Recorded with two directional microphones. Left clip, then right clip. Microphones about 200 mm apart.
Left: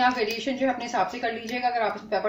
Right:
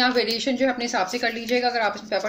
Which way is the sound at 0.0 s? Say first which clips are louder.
Right 2 dB; 50° right (ahead or behind).